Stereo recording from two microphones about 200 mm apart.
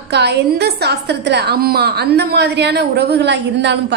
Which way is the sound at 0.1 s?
55° right (ahead or behind).